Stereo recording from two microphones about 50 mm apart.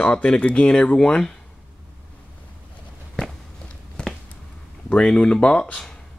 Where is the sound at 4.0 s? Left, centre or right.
Centre.